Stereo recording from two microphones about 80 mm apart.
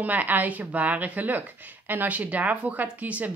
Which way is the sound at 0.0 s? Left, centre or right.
Right.